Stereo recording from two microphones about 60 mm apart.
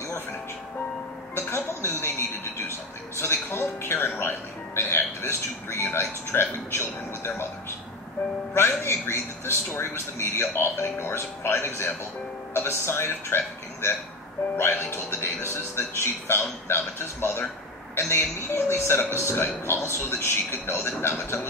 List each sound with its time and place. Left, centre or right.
1.3 s speech: left
8.5 s a man's voice: left